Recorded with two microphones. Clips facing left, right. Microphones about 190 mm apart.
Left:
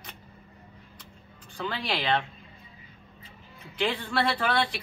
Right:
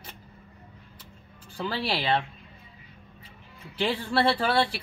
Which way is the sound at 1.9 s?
30° right (ahead or behind).